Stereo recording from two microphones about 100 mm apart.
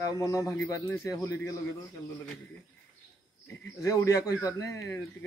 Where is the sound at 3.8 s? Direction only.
35° left (ahead or behind).